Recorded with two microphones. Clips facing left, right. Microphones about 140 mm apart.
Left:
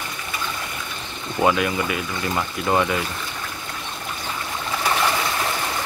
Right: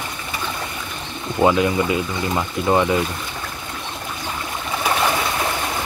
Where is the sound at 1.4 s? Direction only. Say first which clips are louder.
Right 3 dB; 20° right (ahead or behind).